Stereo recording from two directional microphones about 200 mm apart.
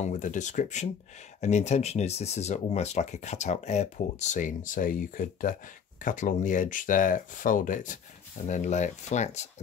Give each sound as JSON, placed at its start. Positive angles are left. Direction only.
{"t": 0.0, "sound": "speech", "side_deg": 40}